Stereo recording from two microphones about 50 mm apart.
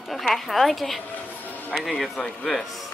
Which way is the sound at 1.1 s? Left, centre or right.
Left.